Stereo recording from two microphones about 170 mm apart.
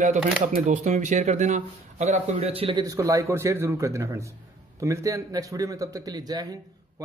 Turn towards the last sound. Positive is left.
turn(degrees=-20)  # may be behind; listen again after turning